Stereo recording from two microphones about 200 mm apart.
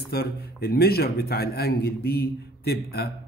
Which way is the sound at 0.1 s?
50° left (ahead or behind).